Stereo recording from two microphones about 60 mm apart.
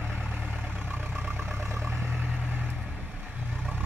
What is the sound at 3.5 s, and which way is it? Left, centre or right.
Roar, centre.